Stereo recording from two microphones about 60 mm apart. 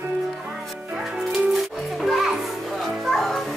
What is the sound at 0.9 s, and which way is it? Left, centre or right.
Music, centre.